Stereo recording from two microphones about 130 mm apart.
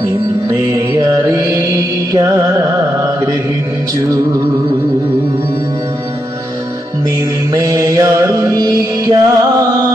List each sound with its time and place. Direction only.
0.5 s music: 30° right (ahead or behind)
7.5 s music: 25° right (ahead or behind)